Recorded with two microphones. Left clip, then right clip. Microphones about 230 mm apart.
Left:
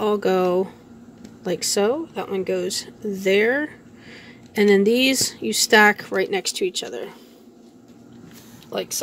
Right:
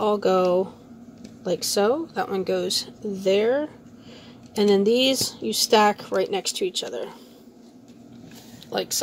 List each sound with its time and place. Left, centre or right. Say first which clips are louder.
0.0 s speech: even; centre
8.6 s speech: right 1 dB; centre